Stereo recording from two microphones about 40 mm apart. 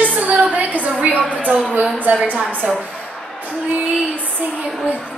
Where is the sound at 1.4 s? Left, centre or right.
Right.